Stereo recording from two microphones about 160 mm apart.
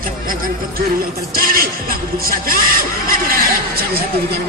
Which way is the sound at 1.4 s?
65° right (ahead or behind).